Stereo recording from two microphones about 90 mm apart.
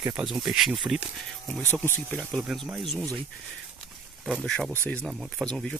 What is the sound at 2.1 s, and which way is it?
Speech, 10° left (ahead or behind).